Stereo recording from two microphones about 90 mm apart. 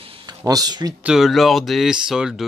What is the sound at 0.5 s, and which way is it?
Speech, 45° right (ahead or behind).